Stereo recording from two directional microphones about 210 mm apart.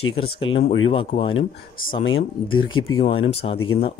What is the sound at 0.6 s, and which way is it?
Speech, 25° left (ahead or behind).